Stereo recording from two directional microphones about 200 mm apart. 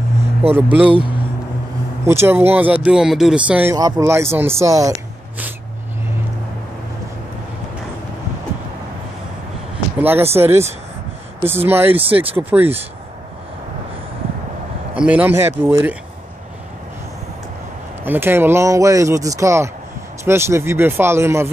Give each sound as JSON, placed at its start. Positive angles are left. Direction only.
{"t": 0.5, "sound": "speech", "side_deg": -10}
{"t": 0.8, "sound": "speech", "side_deg": -25}
{"t": 2.0, "sound": "speech", "side_deg": -10}
{"t": 3.7, "sound": "speech", "side_deg": -20}
{"t": 9.9, "sound": "speech", "side_deg": -10}
{"t": 15.0, "sound": "speech", "side_deg": -5}
{"t": 18.0, "sound": "speech", "side_deg": -10}